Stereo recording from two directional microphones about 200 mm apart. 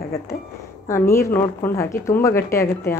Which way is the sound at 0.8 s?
15° left (ahead or behind).